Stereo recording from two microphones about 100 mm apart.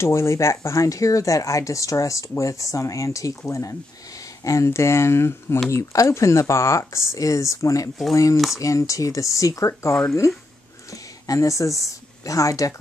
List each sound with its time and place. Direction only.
0.0 s a woman's voice: 30° left (ahead or behind)